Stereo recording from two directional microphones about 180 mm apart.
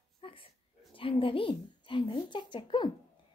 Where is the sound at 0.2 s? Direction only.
30° left (ahead or behind).